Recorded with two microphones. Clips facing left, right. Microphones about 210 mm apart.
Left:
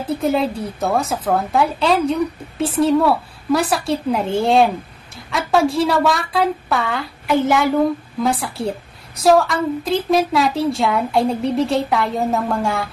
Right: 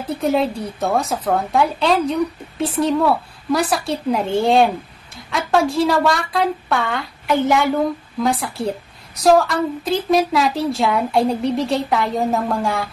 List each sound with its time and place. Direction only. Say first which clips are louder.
0.2 s a woman's voice: right 2 dB; centre (ahead or behind)